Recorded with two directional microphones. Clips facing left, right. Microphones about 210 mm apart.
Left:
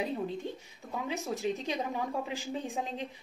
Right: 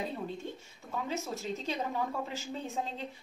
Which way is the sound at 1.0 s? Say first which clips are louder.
Left 5 dB; 15° left (ahead or behind).